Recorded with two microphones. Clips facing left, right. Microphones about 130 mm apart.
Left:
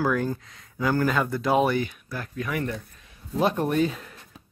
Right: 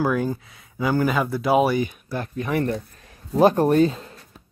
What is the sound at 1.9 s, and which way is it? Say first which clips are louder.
Speech: right 6 dB; 30° right (ahead or behind).